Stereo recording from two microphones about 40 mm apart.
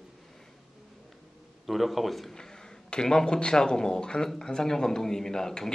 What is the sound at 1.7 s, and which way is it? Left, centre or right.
Speech, centre.